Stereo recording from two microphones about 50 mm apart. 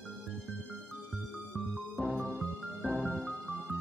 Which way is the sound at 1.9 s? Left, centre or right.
Right.